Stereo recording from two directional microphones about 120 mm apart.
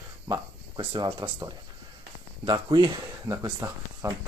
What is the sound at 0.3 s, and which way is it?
Speech, 40° right (ahead or behind).